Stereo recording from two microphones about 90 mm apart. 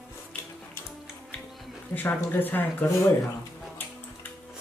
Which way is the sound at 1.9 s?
20° left (ahead or behind).